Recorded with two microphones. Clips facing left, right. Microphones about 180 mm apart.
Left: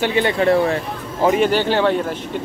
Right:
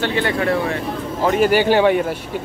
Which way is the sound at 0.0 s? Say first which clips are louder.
Left 2 dB; 15° left (ahead or behind).